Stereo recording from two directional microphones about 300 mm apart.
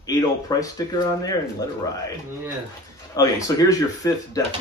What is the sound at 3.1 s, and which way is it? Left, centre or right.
Speech, centre.